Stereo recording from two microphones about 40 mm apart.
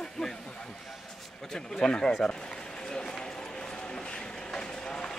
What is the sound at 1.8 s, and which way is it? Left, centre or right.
Speech, left.